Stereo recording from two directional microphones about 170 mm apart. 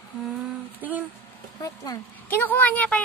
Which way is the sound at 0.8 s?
10° right (ahead or behind).